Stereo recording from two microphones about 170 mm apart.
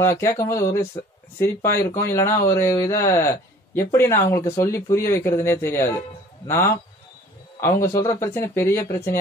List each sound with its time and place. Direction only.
0.2 s speech: 15° left (ahead or behind)